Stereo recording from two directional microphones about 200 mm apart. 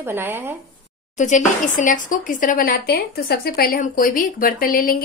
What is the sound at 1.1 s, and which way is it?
A woman's voice, 35° left (ahead or behind).